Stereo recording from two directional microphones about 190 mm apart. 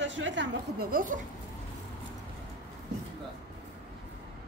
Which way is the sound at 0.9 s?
45° right (ahead or behind).